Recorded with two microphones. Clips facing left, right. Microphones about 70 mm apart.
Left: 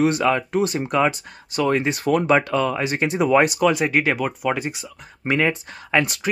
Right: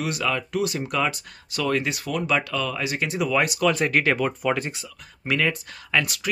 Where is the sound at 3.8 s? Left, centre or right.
Centre.